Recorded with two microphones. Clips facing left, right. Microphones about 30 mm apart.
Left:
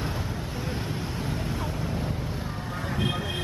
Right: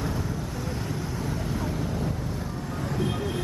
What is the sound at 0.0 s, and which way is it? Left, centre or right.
Vehicle, left.